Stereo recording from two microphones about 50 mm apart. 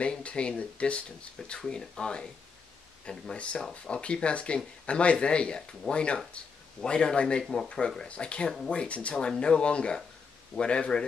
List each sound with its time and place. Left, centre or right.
0.0 s speech: left
1.6 s speech: centre